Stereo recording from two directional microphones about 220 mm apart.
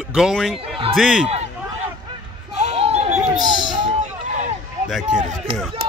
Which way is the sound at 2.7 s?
30° right (ahead or behind).